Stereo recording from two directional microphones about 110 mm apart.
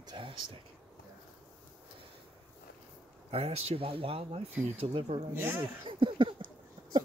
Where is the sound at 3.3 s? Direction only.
65° right (ahead or behind).